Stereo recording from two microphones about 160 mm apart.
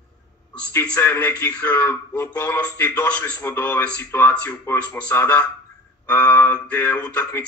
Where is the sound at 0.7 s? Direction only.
15° left (ahead or behind).